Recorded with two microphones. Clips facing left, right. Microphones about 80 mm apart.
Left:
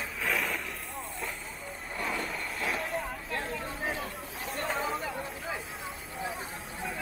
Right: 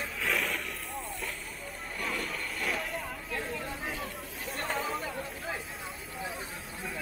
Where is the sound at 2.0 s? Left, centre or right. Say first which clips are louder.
Left 1 dB; centre.